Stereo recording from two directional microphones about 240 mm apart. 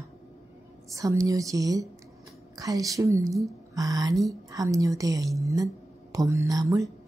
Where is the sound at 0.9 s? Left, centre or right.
Centre.